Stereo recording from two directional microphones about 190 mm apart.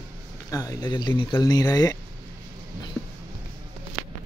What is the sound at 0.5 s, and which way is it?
Speech, 20° left (ahead or behind).